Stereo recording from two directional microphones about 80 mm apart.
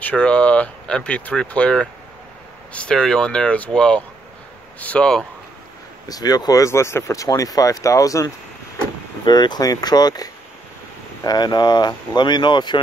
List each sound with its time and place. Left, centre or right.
0.0 s speech: centre
6.0 s speech: left
9.2 s speech: left